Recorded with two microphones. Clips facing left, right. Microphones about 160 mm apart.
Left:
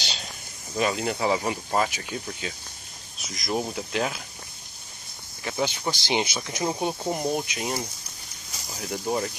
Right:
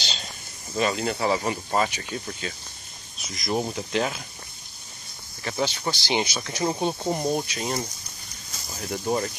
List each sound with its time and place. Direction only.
0.0 s snake: 10° left (ahead or behind)
0.7 s speech: 10° left (ahead or behind)
5.4 s speech: 10° left (ahead or behind)
6.6 s speech: 5° left (ahead or behind)